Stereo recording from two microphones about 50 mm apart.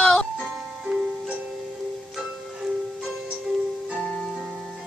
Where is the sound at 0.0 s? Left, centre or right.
Centre.